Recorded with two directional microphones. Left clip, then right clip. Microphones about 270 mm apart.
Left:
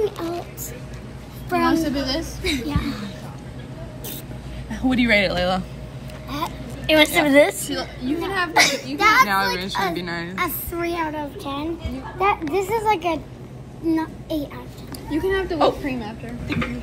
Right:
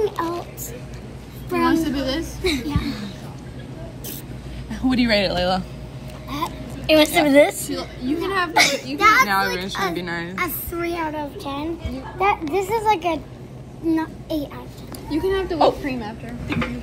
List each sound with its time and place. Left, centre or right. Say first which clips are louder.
0.0 s a sound: right 2 dB; centre
1.9 s a woman's voice: even; left
2.1 s a woman's voice: right 1 dB; centre
4.6 s a woman's voice: left 1 dB; centre